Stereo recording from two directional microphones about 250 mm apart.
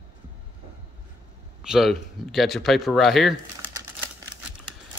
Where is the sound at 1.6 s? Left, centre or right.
Centre.